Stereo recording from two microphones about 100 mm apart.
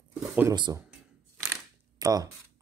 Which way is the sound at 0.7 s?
35° right (ahead or behind).